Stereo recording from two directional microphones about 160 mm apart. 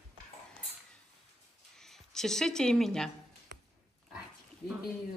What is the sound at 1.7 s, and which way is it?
Speech, 5° left (ahead or behind).